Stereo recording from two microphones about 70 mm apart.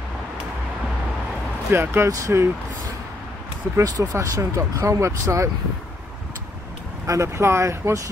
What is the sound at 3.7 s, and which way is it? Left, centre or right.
Speech, right.